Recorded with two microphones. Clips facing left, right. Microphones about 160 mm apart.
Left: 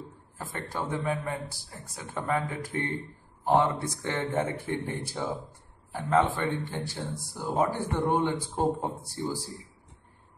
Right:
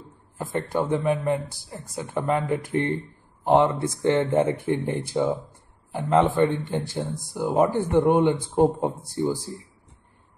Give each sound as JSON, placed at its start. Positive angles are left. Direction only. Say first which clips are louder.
{"t": 0.4, "sound": "speech", "louder": "right 9 dB", "side_deg": -20}